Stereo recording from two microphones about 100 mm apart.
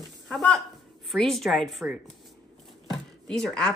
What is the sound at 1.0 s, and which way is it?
A woman's voice, 5° left (ahead or behind).